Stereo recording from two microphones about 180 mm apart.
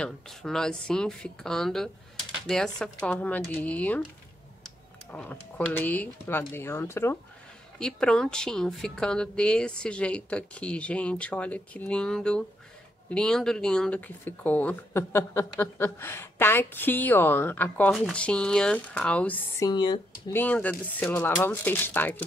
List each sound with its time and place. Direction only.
0.0 s a woman's voice: centre (ahead or behind)
19.6 s speech: 25° left (ahead or behind)
20.3 s a woman's voice: 10° left (ahead or behind)